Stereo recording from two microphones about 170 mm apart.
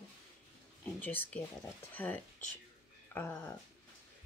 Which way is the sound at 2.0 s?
10° left (ahead or behind).